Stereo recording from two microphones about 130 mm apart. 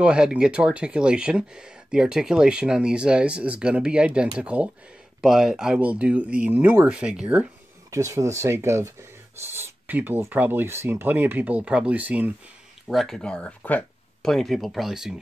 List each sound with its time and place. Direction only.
0.0 s speech: 5° right (ahead or behind)
7.9 s speech: 25° right (ahead or behind)
12.8 s speech: centre (ahead or behind)